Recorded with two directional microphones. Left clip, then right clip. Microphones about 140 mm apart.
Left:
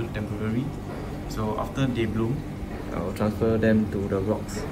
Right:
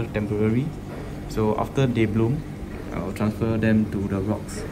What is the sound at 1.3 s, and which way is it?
Speech, 20° left (ahead or behind).